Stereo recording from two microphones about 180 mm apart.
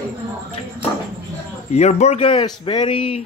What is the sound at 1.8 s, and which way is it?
Speech, 40° left (ahead or behind).